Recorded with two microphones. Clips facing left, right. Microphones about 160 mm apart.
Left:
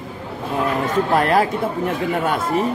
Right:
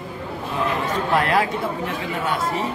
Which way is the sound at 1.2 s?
45° left (ahead or behind).